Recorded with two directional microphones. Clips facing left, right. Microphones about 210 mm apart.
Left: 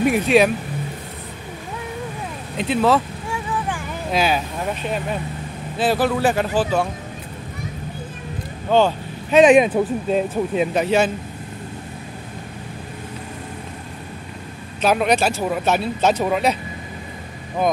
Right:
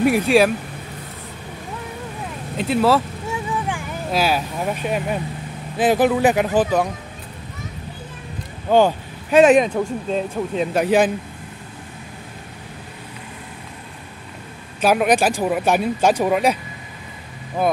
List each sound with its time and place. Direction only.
0.0 s speech: 5° right (ahead or behind)
2.5 s speech: 5° right (ahead or behind)
3.7 s a sound: 5° right (ahead or behind)
4.8 s speech: 10° right (ahead or behind)
8.6 s speech: 10° right (ahead or behind)
9.6 s speech: 5° left (ahead or behind)
10.7 s speech: 10° right (ahead or behind)
14.8 s speech: 10° right (ahead or behind)